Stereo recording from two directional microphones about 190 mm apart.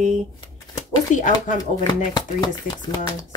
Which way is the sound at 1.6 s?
20° left (ahead or behind).